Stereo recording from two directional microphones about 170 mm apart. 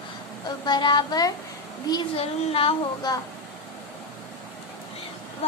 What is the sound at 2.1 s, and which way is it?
Child singing, 35° left (ahead or behind).